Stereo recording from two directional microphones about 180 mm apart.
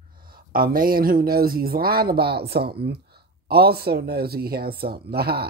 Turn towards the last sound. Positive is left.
turn(degrees=-60)  # may be behind; listen again after turning